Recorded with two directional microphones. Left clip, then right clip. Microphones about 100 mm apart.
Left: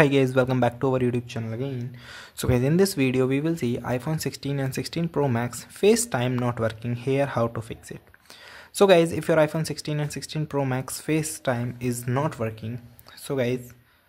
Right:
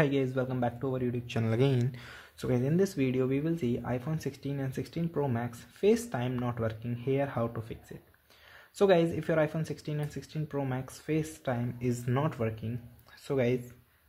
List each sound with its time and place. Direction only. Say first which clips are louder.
0.2 s a man's voice: left 10 dB; 60° left (ahead or behind)
0.8 s speech: left 9 dB; 80° left
1.4 s speech: right 3 dB; 30° right (ahead or behind)
2.5 s speech: left 7 dB; 40° left (ahead or behind)
8.8 s speech: left 7 dB; 35° left (ahead or behind)
11.5 s speech: left 5 dB; 20° left (ahead or behind)